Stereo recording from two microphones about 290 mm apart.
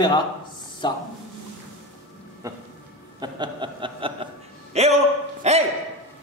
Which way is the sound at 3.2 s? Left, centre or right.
Centre.